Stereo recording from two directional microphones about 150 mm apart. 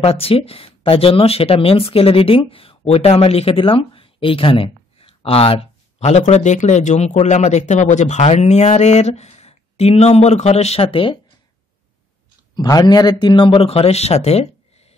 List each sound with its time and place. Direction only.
0.0 s speech: 40° left (ahead or behind)
12.5 s a man's voice: 25° left (ahead or behind); by 15.0 s 45° left (ahead or behind)